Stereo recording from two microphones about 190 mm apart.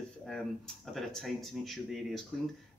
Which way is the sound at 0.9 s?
Centre (ahead or behind).